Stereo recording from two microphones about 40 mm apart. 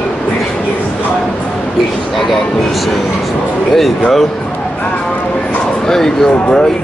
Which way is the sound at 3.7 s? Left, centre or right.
Centre.